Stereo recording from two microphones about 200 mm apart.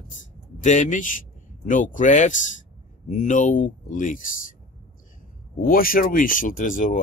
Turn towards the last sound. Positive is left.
turn(degrees=40)  # may be behind; listen again after turning